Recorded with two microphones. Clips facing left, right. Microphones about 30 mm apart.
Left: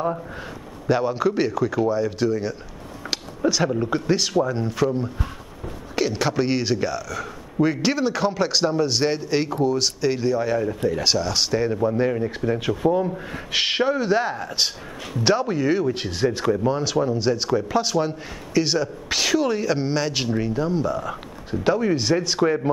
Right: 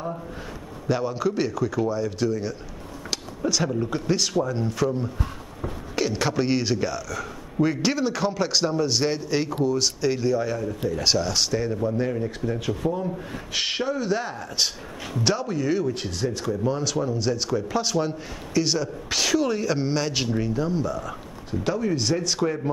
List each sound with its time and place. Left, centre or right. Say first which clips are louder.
0.8 s speech: left 4 dB; centre
5.9 s speech: left 2 dB; centre